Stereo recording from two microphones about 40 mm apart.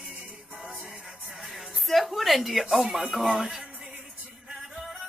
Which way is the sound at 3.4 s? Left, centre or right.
Centre.